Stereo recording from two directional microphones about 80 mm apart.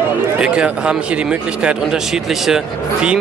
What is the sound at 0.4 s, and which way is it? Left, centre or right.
Speech, centre.